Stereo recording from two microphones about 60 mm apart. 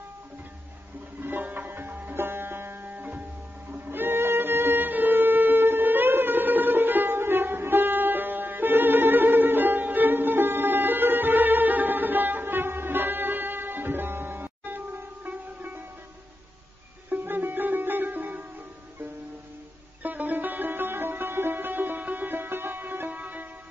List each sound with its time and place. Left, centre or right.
1.2 s music: right
17.1 s music: right
20.0 s music: right